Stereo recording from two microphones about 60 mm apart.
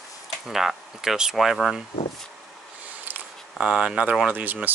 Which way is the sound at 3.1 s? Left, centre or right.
Right.